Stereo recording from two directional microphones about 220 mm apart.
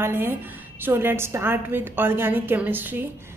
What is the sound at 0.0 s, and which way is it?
A woman's voice, 10° right (ahead or behind).